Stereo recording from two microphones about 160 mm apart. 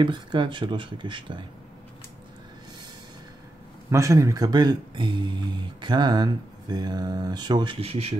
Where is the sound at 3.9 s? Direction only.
20° right (ahead or behind).